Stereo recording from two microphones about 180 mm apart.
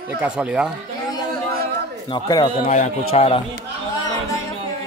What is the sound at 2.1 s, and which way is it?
Speech, 25° left (ahead or behind).